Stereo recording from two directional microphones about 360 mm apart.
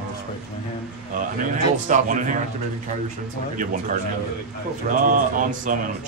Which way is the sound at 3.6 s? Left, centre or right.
Right.